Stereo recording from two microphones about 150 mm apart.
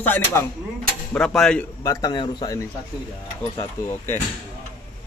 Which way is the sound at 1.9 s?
25° left (ahead or behind).